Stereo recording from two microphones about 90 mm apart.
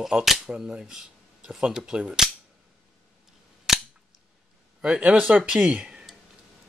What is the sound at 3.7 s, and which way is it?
Scissors, 5° right (ahead or behind).